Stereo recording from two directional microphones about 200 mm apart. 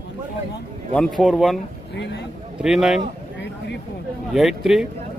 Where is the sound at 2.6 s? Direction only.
5° right (ahead or behind).